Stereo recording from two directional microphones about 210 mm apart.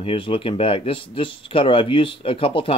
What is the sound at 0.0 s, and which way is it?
Speech, 25° left (ahead or behind).